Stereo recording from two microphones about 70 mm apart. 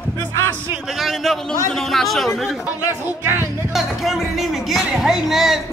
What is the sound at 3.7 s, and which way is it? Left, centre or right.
Speech, centre.